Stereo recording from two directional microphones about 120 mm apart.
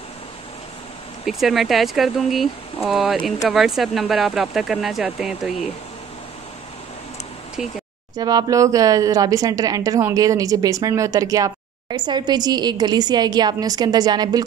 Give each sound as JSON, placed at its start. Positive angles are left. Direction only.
{"t": 1.2, "sound": "speech", "side_deg": 0}
{"t": 8.2, "sound": "speech", "side_deg": -35}